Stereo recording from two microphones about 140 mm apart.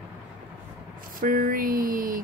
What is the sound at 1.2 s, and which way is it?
Speech, 90° right.